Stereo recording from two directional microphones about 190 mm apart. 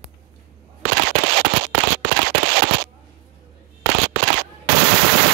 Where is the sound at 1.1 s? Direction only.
65° right (ahead or behind).